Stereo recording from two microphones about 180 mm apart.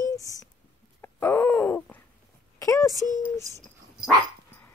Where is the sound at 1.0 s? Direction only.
15° left (ahead or behind).